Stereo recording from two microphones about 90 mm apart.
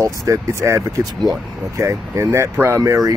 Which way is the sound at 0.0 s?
35° right (ahead or behind).